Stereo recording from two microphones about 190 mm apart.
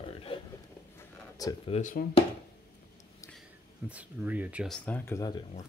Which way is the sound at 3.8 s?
5° right (ahead or behind).